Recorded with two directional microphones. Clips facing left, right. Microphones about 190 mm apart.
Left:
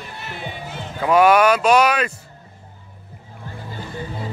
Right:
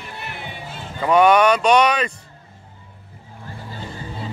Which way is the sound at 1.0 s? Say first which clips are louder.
Even; 5° left (ahead or behind).